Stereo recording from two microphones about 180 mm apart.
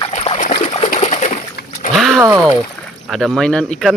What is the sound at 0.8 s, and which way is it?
Pigeon, 40° left (ahead or behind).